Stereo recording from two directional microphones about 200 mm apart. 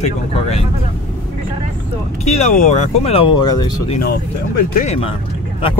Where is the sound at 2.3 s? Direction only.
35° left (ahead or behind).